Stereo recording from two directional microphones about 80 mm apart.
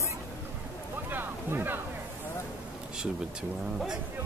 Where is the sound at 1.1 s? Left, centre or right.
Right.